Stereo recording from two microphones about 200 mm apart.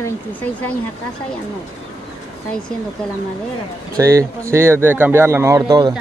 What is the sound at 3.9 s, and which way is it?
Speech, 15° right (ahead or behind).